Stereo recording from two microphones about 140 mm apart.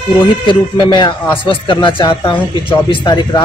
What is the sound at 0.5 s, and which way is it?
Speech, 35° left (ahead or behind).